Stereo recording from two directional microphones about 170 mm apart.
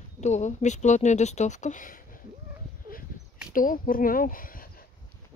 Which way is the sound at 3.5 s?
55° left (ahead or behind).